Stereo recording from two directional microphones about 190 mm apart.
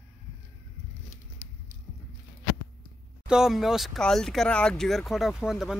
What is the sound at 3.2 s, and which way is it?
Speech, 5° right (ahead or behind).